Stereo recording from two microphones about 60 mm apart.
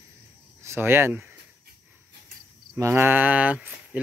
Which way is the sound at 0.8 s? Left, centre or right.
Right.